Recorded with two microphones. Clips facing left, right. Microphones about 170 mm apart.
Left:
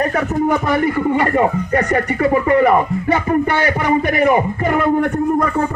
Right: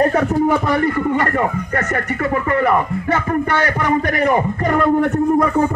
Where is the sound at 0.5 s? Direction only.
5° left (ahead or behind).